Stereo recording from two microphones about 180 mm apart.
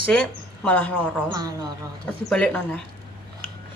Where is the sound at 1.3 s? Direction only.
20° right (ahead or behind).